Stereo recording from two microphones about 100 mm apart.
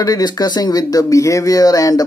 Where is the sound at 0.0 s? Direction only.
40° left (ahead or behind).